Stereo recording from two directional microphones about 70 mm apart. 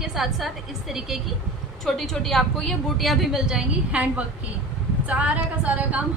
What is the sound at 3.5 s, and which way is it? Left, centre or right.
A woman's voice, centre.